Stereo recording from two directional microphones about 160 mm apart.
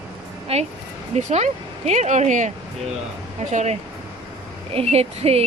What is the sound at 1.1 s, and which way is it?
Speech, 45° right (ahead or behind).